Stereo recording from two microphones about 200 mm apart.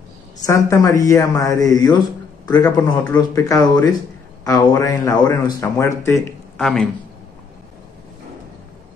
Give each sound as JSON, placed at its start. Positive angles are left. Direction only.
{"t": 0.5, "sound": "a man's voice", "side_deg": 15}